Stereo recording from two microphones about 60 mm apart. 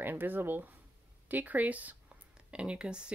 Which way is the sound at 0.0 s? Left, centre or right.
Right.